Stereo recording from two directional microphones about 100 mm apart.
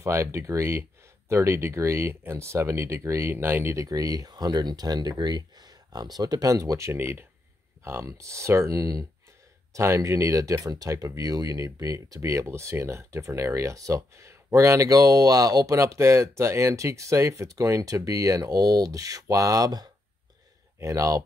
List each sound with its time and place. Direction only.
0.0 s speech: 30° right (ahead or behind)